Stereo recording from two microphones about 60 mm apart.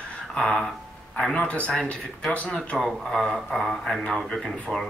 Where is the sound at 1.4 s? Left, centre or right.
Left.